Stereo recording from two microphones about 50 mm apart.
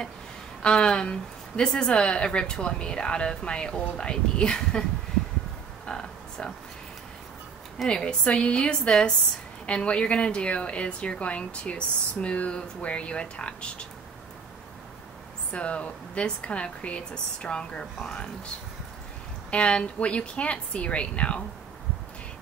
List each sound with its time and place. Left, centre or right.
0.6 s a woman's voice: centre
5.9 s a sound: centre
7.8 s a woman's voice: centre
15.5 s a woman's voice: left
19.5 s a woman's voice: left